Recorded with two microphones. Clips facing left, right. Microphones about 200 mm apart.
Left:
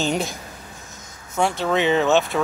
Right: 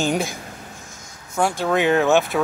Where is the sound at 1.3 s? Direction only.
5° right (ahead or behind).